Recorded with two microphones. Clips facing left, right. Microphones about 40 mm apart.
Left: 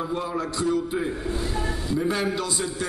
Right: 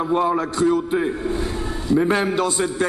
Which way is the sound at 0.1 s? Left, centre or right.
Right.